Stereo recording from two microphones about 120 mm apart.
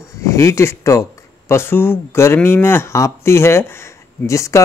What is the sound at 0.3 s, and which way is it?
Speech, 25° left (ahead or behind).